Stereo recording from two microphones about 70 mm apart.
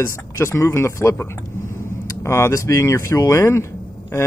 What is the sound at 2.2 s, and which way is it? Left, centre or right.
Speech, left.